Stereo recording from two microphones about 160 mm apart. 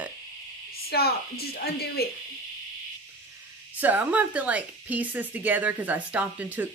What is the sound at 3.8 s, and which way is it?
Speech, 10° right (ahead or behind).